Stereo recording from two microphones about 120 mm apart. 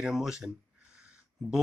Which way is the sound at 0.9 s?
5° right (ahead or behind).